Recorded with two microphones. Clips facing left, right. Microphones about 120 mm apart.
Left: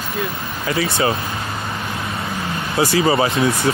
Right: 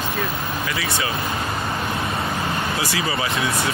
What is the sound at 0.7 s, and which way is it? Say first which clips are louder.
Speech: left 11 dB; 35° left (ahead or behind).